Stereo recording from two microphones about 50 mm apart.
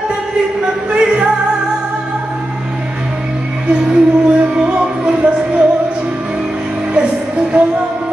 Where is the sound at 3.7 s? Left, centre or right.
Centre.